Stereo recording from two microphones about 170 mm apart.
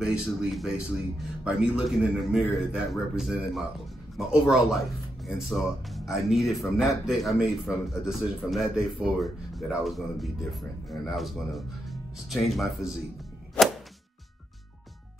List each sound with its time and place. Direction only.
0.0 s speech: 5° right (ahead or behind)